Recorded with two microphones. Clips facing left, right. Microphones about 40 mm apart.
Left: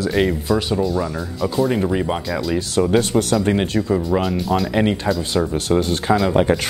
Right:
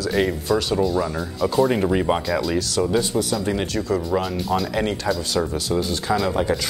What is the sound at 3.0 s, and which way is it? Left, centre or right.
Speech, left.